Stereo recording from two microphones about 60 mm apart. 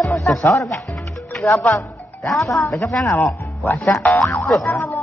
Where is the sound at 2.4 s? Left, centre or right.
Left.